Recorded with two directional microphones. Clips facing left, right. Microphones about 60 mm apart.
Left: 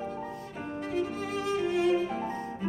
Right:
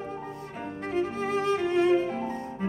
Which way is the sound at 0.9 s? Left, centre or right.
Right.